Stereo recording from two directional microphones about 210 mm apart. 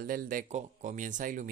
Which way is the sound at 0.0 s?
45° right (ahead or behind).